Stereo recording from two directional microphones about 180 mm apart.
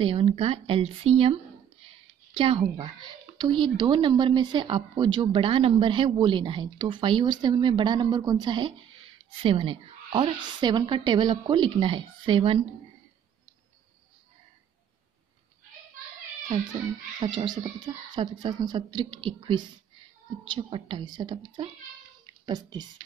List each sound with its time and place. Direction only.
0.0 s speech: 30° right (ahead or behind)
17.2 s speech: 25° right (ahead or behind)
22.2 s a sound: 25° right (ahead or behind)